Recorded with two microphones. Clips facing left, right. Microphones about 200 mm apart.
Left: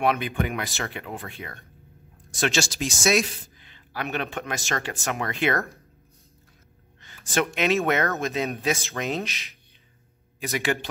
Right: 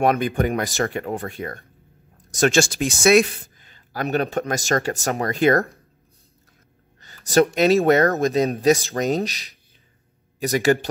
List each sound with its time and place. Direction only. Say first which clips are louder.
0.0 s speech: right 5 dB; 45° right (ahead or behind)
3.6 s speech: right 6 dB; 40° right (ahead or behind)
7.0 s speech: right 9 dB; 40° right (ahead or behind)